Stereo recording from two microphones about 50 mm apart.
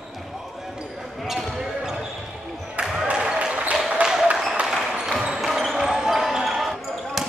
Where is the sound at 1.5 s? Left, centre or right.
Centre.